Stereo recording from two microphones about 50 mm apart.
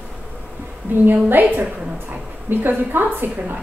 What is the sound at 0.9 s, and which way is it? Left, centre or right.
A woman's voice, right.